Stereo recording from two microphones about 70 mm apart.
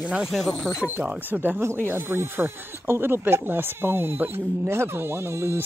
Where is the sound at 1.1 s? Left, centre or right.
Right.